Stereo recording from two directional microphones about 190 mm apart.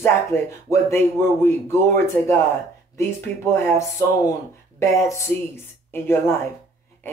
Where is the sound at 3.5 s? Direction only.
15° left (ahead or behind).